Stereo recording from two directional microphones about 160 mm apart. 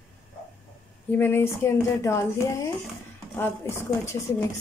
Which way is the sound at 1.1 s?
15° left (ahead or behind).